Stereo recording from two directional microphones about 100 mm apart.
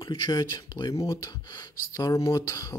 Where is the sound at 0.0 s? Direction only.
50° left (ahead or behind).